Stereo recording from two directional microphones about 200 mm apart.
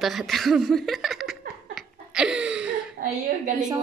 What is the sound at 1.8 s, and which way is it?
Laughter, 5° right (ahead or behind).